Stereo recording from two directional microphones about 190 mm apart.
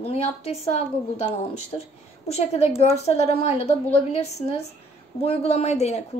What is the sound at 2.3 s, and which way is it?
A woman's voice, 35° left (ahead or behind).